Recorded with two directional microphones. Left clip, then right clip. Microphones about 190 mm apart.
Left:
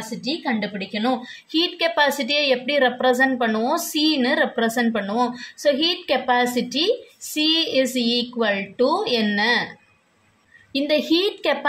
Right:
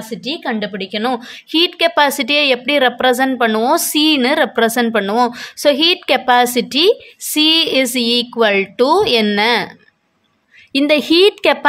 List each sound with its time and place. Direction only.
0.5 s a woman's voice: 50° right (ahead or behind)
10.7 s a woman's voice: 35° right (ahead or behind)